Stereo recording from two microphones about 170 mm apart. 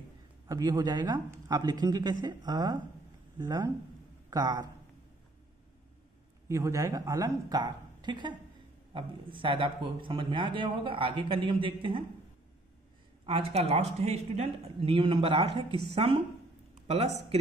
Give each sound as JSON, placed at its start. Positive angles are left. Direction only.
{"t": 0.5, "sound": "a man's voice", "side_deg": -20}
{"t": 6.5, "sound": "speech", "side_deg": -20}
{"t": 13.2, "sound": "speech", "side_deg": -35}